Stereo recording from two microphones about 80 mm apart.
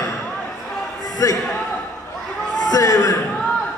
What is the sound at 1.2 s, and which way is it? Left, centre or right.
Speech, left.